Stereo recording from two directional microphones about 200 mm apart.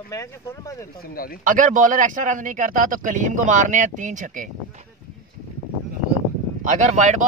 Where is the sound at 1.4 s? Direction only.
40° right (ahead or behind).